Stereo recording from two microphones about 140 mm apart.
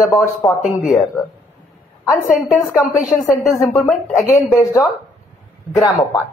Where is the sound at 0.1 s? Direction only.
15° left (ahead or behind).